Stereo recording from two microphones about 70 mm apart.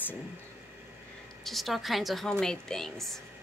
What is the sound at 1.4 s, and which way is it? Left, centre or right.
A woman's voice, centre.